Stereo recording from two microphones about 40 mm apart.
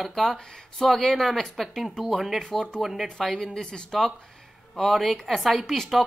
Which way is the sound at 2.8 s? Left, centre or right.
Centre.